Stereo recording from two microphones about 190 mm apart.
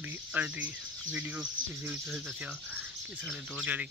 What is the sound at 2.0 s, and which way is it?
Speech, centre (ahead or behind).